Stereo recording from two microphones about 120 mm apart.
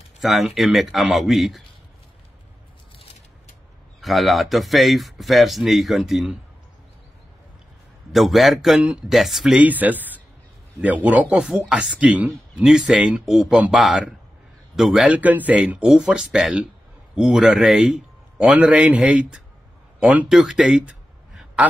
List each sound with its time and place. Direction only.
0.2 s speech: centre (ahead or behind)
4.0 s speech: centre (ahead or behind)
8.1 s speech: centre (ahead or behind)